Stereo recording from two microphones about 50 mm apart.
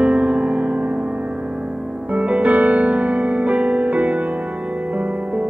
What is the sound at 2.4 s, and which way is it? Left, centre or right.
Music, right.